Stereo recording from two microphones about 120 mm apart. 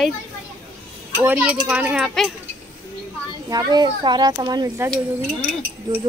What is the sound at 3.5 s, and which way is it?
Speech, 35° right (ahead or behind).